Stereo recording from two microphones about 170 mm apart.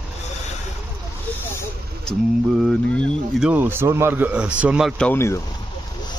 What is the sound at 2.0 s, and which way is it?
Speech, centre (ahead or behind).